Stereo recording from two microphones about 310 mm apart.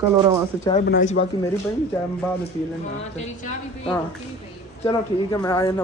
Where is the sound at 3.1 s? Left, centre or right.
Left.